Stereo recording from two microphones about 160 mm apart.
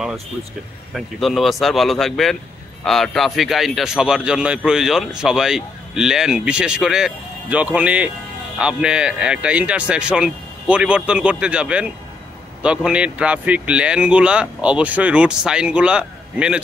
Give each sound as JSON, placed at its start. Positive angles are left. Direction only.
{"t": 0.9, "sound": "speech", "side_deg": 0}